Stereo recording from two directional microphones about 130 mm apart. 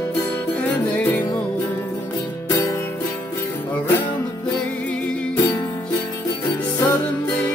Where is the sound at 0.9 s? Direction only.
10° left (ahead or behind).